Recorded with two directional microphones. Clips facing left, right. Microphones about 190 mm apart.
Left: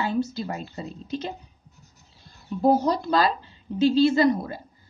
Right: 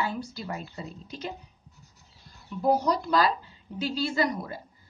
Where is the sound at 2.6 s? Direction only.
25° left (ahead or behind).